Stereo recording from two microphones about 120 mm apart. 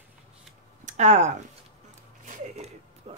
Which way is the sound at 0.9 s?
70° right (ahead or behind).